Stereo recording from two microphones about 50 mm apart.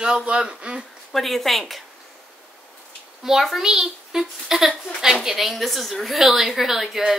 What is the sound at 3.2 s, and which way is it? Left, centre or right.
A child's voice, centre.